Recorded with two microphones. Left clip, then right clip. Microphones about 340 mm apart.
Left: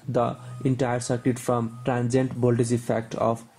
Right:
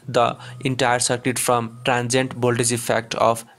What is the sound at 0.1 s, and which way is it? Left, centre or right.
Speech, right.